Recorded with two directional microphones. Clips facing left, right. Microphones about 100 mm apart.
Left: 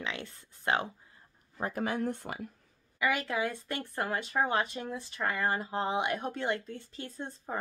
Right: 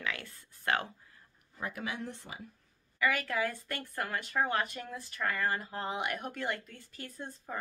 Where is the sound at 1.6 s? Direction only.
40° left (ahead or behind).